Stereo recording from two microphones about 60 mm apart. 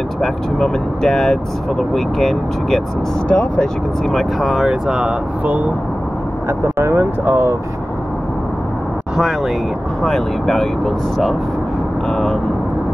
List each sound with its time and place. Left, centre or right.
0.2 s speech: centre
3.3 s speech: centre
4.1 s speech: centre
4.6 s speech: centre
6.8 s speech: right
10.0 s speech: centre